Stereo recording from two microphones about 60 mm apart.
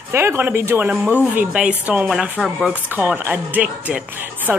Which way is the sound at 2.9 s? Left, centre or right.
Right.